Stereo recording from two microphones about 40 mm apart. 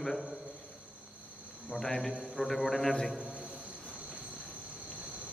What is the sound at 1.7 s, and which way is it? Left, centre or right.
A man's voice, centre.